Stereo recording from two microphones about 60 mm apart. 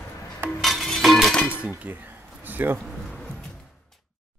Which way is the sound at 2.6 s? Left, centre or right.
Right.